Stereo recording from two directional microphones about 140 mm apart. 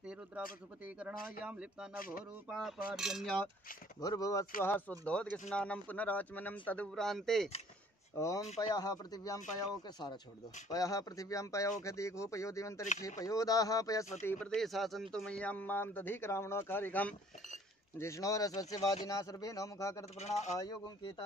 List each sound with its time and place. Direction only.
0.0 s pigeon: 5° right (ahead or behind)
1.4 s speech: 10° right (ahead or behind)
2.0 s speech: 90° left
2.4 s cutlery: 5° right (ahead or behind)
4.0 s speech: 25° left (ahead or behind)
4.6 s speech: 15° left (ahead or behind)
8.2 s speech: 25° left (ahead or behind)
14.2 s speech: 5° left (ahead or behind); by 20.1 s 20° left (ahead or behind)
20.2 s a man's voice: 55° left (ahead or behind)
20.5 s speech: 25° left (ahead or behind)